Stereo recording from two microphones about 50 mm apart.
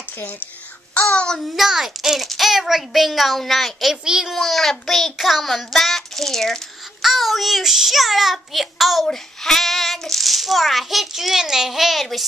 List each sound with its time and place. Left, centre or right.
1.1 s child singing: centre
1.5 s speech: centre
3.9 s a child's voice: centre
4.3 s speech: centre